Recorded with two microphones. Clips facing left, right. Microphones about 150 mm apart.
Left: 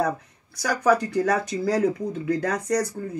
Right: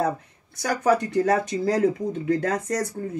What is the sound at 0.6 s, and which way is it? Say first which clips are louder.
Speech: even; 20° right (ahead or behind).